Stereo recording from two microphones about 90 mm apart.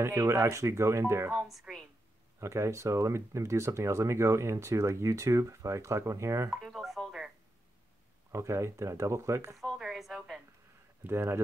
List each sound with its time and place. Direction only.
0.0 s speech: 35° right (ahead or behind)
1.3 s speech: 5° right (ahead or behind)
2.4 s speech: 35° right (ahead or behind)
6.5 s a sound: centre (ahead or behind)
8.3 s speech: 30° right (ahead or behind)
9.6 s a woman's voice: 5° right (ahead or behind)
11.1 s speech: 25° right (ahead or behind)